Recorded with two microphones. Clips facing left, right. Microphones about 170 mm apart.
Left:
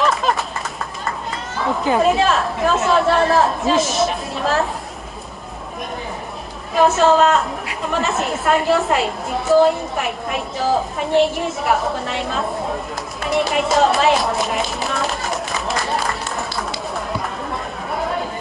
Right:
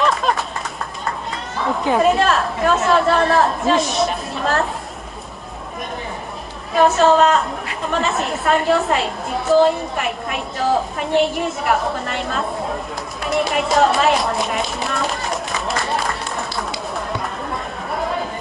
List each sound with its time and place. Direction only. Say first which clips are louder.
0.0 s a sound: even; centre (ahead or behind)
1.6 s a woman's voice: even; centre (ahead or behind)
6.7 s a woman's voice: even; centre (ahead or behind)
13.2 s music: left 1 dB; centre (ahead or behind)